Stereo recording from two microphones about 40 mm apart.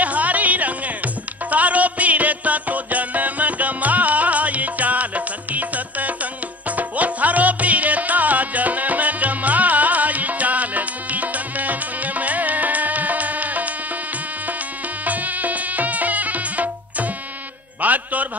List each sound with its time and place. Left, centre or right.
0.0 s music: right
15.0 s music: right